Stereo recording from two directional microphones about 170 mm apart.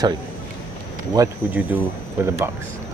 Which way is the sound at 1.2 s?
20° right (ahead or behind).